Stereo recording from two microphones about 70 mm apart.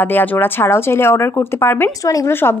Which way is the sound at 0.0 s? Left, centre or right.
Left.